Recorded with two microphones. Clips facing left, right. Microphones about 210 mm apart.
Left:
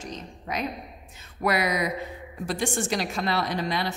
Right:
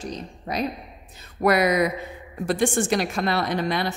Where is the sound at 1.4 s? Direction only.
50° right (ahead or behind).